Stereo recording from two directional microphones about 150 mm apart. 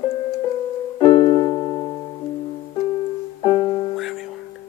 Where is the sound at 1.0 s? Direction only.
35° left (ahead or behind).